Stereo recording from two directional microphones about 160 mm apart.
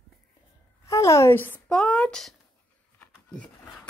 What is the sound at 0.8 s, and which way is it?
A woman's voice, 20° left (ahead or behind).